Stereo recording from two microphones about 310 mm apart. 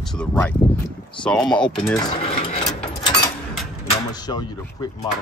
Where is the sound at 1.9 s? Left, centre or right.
Centre.